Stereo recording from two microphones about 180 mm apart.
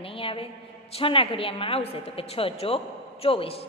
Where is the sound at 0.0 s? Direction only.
30° left (ahead or behind).